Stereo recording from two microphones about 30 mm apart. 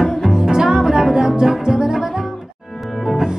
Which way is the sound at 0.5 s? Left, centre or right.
Right.